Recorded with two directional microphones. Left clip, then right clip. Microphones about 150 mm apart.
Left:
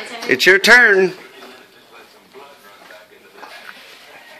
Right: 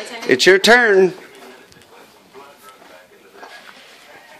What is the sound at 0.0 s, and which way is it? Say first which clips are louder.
Speech: even; 25° right (ahead or behind).